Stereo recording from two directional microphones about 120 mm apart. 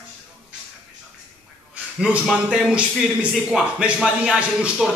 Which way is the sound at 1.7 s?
10° right (ahead or behind).